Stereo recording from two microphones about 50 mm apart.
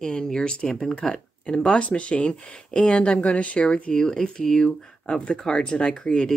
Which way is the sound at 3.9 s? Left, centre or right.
Centre.